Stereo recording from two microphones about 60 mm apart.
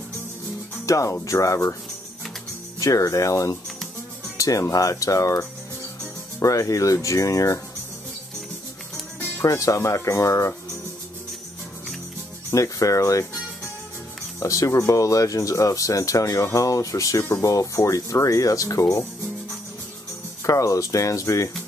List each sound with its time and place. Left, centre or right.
0.8 s speech: left
2.8 s speech: left
9.4 s speech: left
12.4 s speech: left
14.4 s speech: left
20.4 s speech: left